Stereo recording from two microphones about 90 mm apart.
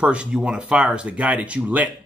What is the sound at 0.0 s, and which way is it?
Speech, 10° right (ahead or behind).